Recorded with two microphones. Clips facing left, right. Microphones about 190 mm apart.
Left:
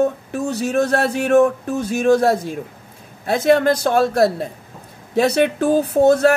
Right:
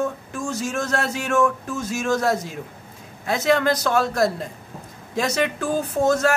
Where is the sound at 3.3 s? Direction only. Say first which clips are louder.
Left 5 dB; 55° left (ahead or behind).